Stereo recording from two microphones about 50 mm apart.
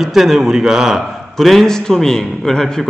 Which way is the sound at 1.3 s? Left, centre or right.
Centre.